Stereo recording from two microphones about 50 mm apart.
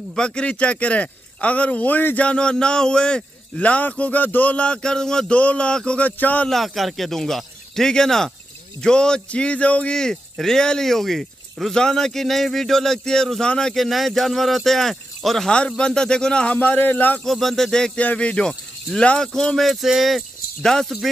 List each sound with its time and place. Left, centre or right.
0.1 s speech: centre; by 2.1 s left
2.1 s speech: left
5.3 s speech: left
5.9 s speech: left
6.5 s speech: centre; by 9.9 s left
9.9 s speech: centre
11.7 s speech: centre
13.8 s speech: centre
16.5 s speech: left
17.2 s speech: centre
17.9 s speech: left; by 21.1 s centre